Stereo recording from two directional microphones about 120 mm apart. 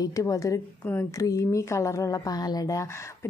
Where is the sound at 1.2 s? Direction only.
25° left (ahead or behind).